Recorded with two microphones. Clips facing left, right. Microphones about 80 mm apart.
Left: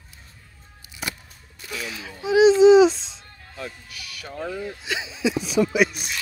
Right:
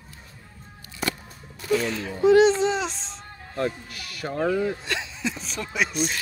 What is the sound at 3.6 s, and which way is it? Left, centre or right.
Speech, right.